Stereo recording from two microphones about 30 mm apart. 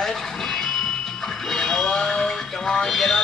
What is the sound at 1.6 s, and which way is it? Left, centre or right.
Speech, centre.